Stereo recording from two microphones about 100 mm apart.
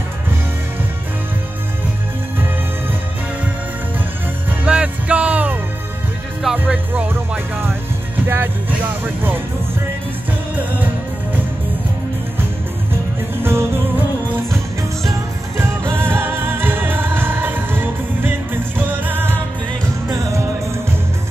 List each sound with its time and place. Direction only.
4.5 s music: 10° right (ahead or behind)
10.5 s music: 15° right (ahead or behind)
13.4 s music: 25° right (ahead or behind)
15.0 s music: 25° right (ahead or behind)
20.1 s music: 30° right (ahead or behind)